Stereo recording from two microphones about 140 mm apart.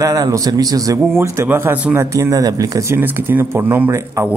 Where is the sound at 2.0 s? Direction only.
25° right (ahead or behind).